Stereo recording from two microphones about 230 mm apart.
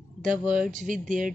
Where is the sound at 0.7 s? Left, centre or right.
Right.